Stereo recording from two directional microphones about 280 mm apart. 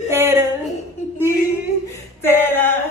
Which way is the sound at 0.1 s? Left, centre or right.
Centre.